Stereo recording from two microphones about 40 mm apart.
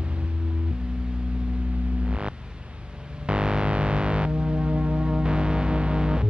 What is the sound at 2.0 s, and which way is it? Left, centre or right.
Music, right.